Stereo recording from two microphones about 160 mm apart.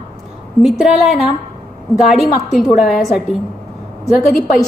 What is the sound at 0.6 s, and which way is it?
A woman's voice, 5° right (ahead or behind).